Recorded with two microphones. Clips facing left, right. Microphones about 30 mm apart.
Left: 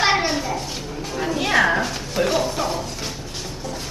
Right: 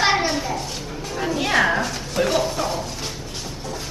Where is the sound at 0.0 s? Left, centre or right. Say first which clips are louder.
Even; centre.